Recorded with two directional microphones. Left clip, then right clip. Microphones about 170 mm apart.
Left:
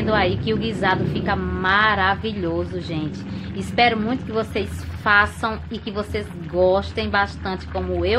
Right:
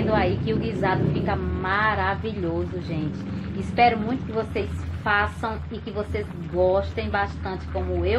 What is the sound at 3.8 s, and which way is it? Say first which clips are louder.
Speech: left 1 dB; 35° left (ahead or behind).